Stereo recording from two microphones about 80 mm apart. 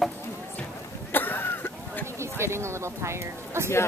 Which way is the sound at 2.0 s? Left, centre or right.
Right.